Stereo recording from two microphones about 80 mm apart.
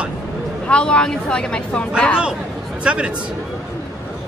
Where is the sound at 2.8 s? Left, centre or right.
Centre.